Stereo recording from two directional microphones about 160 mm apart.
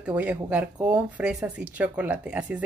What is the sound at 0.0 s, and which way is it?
A woman's voice, 10° right (ahead or behind).